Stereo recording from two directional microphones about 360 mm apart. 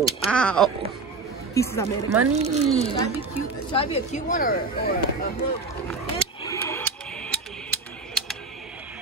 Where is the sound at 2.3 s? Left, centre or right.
Centre.